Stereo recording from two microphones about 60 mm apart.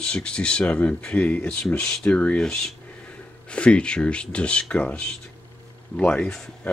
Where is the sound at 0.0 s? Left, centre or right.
Centre.